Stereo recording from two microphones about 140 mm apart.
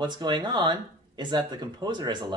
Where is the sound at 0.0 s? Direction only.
30° right (ahead or behind).